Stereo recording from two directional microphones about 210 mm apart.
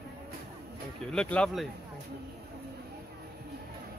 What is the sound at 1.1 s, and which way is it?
Speech, 5° left (ahead or behind).